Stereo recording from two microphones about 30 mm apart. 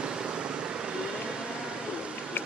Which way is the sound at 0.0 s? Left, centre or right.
Right.